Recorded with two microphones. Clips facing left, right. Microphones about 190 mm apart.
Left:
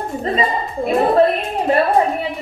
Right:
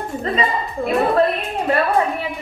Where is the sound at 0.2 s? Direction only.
30° left (ahead or behind).